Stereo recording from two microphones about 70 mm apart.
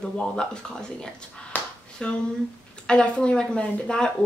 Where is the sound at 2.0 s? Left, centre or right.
Centre.